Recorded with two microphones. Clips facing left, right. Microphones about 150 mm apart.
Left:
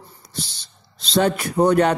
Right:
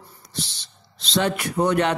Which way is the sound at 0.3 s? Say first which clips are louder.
Even; 40° left (ahead or behind).